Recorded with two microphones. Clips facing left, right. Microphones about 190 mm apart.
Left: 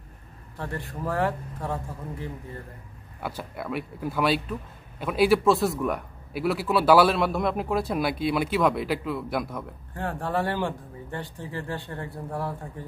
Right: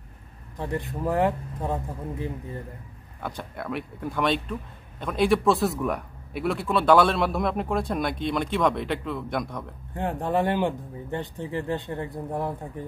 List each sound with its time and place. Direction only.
0.6 s speech: 20° right (ahead or behind)
3.2 s speech: 5° left (ahead or behind)
9.9 s speech: 20° right (ahead or behind)